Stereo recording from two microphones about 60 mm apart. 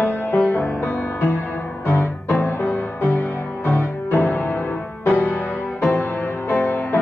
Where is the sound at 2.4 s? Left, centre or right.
Left.